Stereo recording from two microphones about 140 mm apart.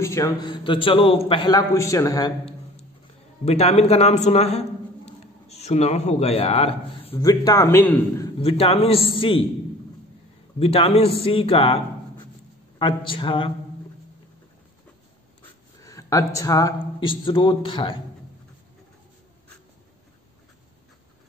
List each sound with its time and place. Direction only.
0.0 s a man's voice: 20° left (ahead or behind)
0.4 s speech: 35° left (ahead or behind)
1.6 s a man's voice: 20° left (ahead or behind)
3.4 s a man's voice: 50° left (ahead or behind)
7.2 s a man's voice: 25° left (ahead or behind)
8.4 s a man's voice: 40° left (ahead or behind)
10.6 s speech: 45° left (ahead or behind)
15.8 s speech: 20° left (ahead or behind)